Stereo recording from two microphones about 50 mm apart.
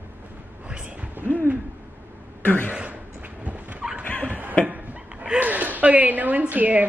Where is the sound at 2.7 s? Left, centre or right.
Right.